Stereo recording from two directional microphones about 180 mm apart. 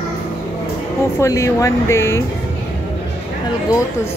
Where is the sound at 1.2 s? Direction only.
15° left (ahead or behind).